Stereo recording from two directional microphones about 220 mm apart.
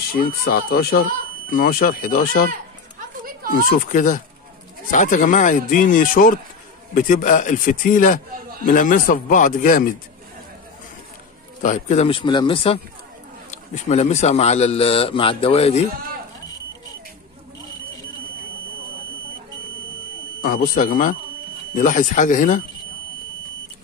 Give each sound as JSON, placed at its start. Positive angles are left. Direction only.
{"t": 0.1, "sound": "speech", "side_deg": 45}
{"t": 3.6, "sound": "speech", "side_deg": 40}
{"t": 11.6, "sound": "a man's voice", "side_deg": 35}
{"t": 20.4, "sound": "speech", "side_deg": 40}